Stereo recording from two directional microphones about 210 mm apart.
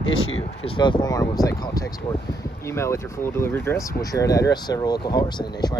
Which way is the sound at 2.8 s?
10° left (ahead or behind).